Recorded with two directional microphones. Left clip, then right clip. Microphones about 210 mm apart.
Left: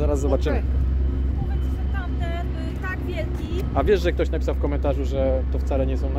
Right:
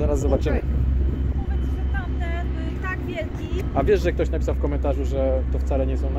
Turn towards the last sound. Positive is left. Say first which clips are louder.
# even
turn(degrees=0)  # may be behind; listen again after turning